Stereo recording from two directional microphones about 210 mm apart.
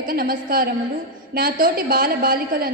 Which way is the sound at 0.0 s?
45° right (ahead or behind).